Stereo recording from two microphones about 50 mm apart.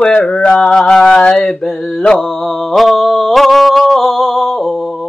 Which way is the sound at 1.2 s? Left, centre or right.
Centre.